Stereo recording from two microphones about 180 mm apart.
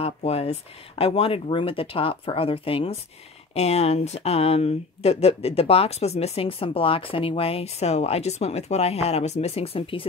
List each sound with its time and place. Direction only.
0.0 s speech: 35° left (ahead or behind)